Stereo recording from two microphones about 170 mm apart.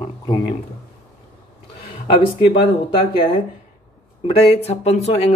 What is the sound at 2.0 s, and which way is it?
Speech, 30° left (ahead or behind).